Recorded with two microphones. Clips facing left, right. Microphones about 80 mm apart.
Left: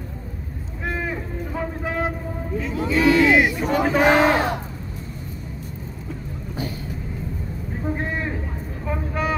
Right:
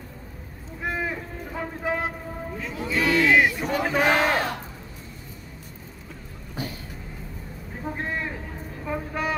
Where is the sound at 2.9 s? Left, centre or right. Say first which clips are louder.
Left 4 dB; centre.